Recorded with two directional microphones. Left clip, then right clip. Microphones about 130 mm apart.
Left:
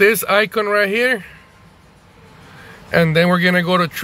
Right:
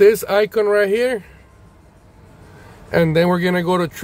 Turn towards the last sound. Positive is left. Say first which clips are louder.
# left 3 dB
turn(degrees=-35)  # may be behind; listen again after turning